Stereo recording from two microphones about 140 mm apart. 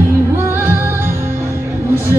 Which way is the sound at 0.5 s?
15° right (ahead or behind).